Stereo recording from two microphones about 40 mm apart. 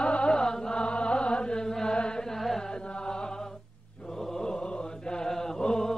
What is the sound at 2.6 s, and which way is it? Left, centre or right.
Music, left.